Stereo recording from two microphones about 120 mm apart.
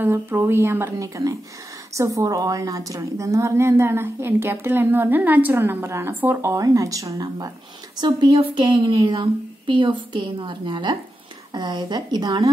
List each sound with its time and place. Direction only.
0.0 s a woman's voice: 20° right (ahead or behind)
6.5 s a woman's voice: 30° right (ahead or behind)
8.0 s a woman's voice: 40° right (ahead or behind)